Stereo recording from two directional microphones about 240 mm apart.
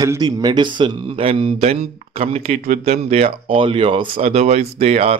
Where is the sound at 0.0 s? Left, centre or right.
Centre.